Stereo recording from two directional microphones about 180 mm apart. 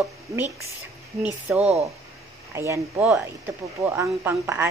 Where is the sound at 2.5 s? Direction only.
15° right (ahead or behind).